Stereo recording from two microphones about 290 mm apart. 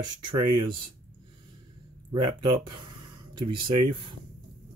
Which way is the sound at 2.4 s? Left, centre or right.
Centre.